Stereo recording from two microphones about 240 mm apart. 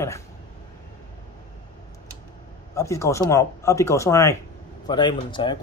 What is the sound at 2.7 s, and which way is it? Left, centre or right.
Speech, centre.